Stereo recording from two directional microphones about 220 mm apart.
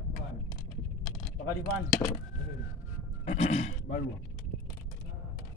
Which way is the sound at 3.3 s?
30° left (ahead or behind).